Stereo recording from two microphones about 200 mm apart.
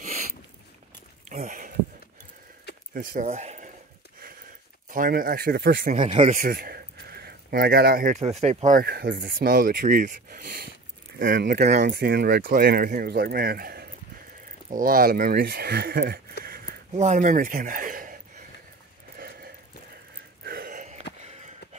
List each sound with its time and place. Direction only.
1.3 s speech: 40° right (ahead or behind)
2.9 s speech: 45° right (ahead or behind)
4.8 s speech: 45° right (ahead or behind)
11.8 s speech: 55° right (ahead or behind)
16.4 s a sound: 50° right (ahead or behind)
16.9 s a sound: 35° right (ahead or behind)
21.2 s sniff: 35° right (ahead or behind)